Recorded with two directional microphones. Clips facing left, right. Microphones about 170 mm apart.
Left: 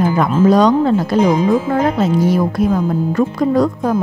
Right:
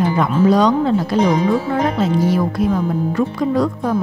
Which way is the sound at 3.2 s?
45° left (ahead or behind).